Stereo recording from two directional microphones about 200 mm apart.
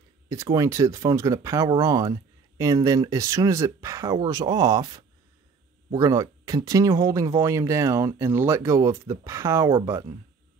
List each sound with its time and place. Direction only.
0.3 s speech: 15° right (ahead or behind)